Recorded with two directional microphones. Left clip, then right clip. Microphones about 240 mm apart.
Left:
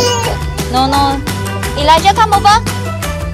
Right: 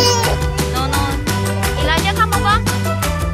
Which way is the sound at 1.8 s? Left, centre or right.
Left.